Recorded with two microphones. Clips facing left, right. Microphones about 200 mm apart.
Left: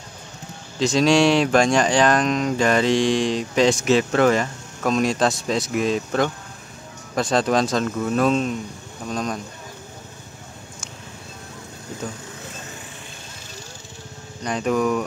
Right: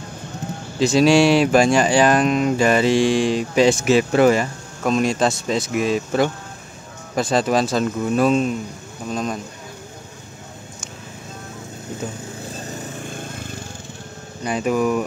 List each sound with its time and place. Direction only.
0.7 s speech: 5° right (ahead or behind)
12.6 s lawn mower: 40° right (ahead or behind)
14.4 s speech: 5° right (ahead or behind)